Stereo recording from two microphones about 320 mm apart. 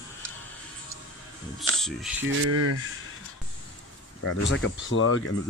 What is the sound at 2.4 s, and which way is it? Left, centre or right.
Speech, right.